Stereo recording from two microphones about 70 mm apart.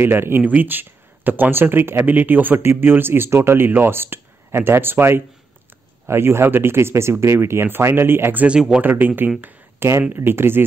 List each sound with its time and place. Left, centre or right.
0.0 s speech: right
8.5 s speech: centre
8.8 s speech: right
9.4 s a sound: right
10.1 s speech: right